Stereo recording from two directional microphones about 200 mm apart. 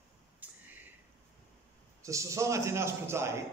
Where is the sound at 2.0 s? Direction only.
15° right (ahead or behind).